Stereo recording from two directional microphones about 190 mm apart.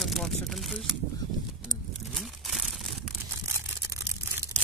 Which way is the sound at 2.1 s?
Centre (ahead or behind).